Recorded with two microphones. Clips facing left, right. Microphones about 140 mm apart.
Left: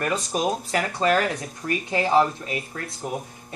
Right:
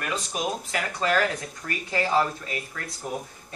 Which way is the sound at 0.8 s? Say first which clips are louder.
Left 2 dB; 25° left (ahead or behind).